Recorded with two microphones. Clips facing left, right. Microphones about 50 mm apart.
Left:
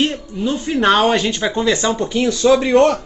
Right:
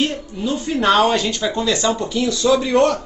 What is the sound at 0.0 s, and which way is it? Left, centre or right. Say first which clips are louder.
Speech: left 2 dB; left.